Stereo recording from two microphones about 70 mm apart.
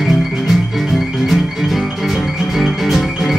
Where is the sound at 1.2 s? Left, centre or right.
Centre.